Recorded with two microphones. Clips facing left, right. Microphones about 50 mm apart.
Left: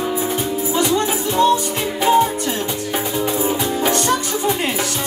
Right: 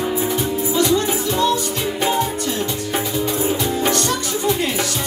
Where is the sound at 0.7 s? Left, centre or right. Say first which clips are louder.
Even; left.